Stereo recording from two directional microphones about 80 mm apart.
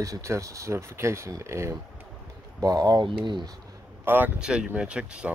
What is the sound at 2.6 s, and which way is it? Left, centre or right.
Speech, right.